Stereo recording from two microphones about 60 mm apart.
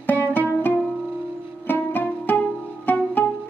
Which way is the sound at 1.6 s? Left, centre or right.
Left.